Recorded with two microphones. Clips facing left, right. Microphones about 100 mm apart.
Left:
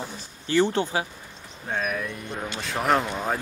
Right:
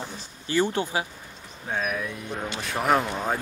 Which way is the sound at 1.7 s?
Centre (ahead or behind).